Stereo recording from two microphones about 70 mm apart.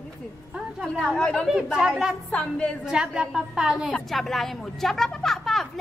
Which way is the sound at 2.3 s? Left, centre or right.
Centre.